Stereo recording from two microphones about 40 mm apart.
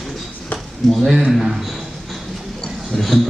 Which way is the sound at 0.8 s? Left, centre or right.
Centre.